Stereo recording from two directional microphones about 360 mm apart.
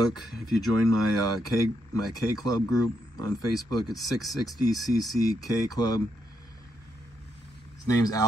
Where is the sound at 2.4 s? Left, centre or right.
Centre.